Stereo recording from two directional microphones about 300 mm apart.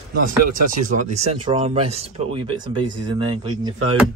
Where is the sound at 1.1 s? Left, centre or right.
Right.